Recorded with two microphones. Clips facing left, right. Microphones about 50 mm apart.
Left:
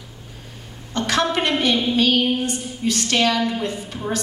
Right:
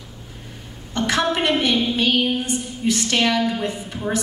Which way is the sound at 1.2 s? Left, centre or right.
Centre.